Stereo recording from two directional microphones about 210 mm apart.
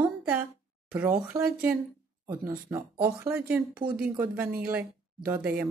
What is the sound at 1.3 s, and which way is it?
Speech, 10° right (ahead or behind).